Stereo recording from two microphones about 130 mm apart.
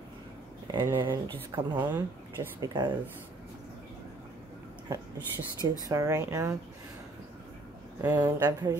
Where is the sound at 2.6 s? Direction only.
30° right (ahead or behind).